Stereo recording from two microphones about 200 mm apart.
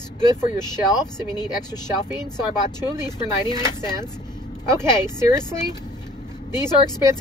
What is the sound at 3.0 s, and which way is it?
Speech, 20° left (ahead or behind).